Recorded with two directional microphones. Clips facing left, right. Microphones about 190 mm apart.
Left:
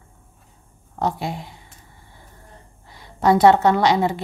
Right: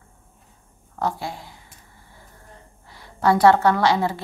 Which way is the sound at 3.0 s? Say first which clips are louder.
Left 2 dB; 20° left (ahead or behind).